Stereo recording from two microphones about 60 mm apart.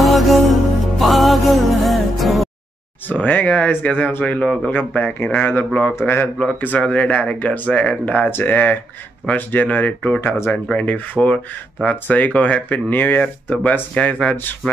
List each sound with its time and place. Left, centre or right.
0.0 s music: centre
3.1 s speech: left
5.7 s speech: left
6.0 s speech: left
8.3 s speech: left